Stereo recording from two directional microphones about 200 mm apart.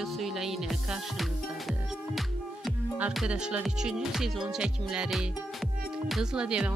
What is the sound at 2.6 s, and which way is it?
Speech, 5° right (ahead or behind).